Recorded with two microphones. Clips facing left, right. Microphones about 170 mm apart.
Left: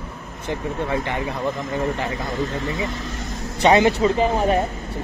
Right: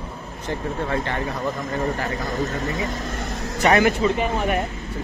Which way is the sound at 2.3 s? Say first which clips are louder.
Even; 45° right (ahead or behind).